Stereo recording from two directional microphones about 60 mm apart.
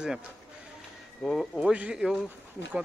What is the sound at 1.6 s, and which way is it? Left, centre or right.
Speech, centre.